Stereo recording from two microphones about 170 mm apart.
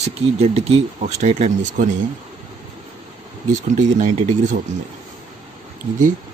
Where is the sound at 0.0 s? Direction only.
40° right (ahead or behind).